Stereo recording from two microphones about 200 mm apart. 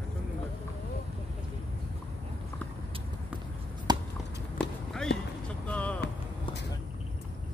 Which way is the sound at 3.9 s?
20° right (ahead or behind).